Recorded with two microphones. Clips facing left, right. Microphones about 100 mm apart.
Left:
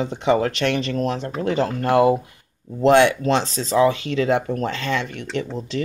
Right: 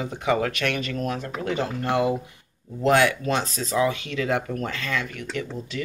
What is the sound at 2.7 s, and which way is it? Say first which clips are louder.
Speech: left 5 dB; 25° left (ahead or behind).